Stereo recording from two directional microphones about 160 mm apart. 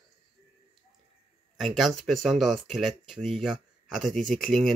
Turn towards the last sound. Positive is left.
turn(degrees=0)  # may be behind; listen again after turning